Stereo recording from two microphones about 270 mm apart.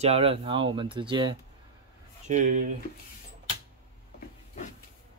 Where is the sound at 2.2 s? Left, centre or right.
Right.